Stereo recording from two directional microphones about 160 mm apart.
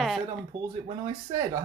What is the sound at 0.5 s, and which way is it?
Speech, 30° right (ahead or behind).